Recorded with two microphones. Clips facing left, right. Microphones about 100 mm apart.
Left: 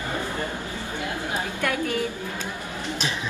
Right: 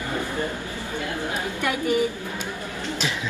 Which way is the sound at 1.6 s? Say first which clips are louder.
Right 4 dB; 15° right (ahead or behind).